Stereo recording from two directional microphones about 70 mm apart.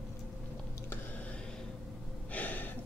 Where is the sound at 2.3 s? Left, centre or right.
Left.